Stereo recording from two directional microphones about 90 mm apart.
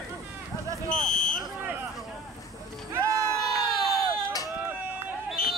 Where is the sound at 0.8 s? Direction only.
10° left (ahead or behind).